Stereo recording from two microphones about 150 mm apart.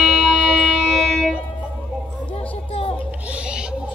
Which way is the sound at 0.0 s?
5° right (ahead or behind).